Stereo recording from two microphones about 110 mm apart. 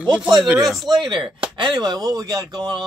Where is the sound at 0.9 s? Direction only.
45° right (ahead or behind).